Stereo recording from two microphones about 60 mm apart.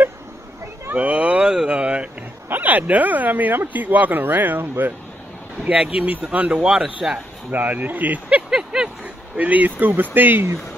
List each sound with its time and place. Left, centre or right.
0.9 s a sound: right
2.5 s speech: right
5.7 s speech: centre
7.5 s speech: right
8.5 s a sound: centre
9.4 s speech: right